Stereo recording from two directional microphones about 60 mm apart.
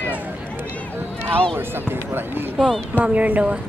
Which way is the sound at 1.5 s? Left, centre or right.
Right.